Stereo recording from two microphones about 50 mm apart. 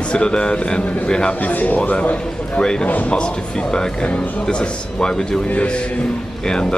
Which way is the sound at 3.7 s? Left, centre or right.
Centre.